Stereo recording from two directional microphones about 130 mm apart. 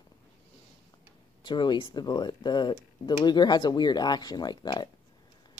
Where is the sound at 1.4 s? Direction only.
35° left (ahead or behind).